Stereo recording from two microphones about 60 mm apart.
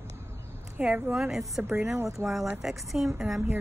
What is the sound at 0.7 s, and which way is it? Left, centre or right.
Speech, right.